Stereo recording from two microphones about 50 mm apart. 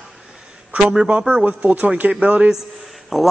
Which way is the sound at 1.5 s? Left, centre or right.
Right.